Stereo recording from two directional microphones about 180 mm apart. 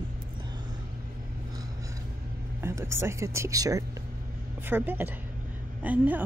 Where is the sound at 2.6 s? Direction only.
15° right (ahead or behind).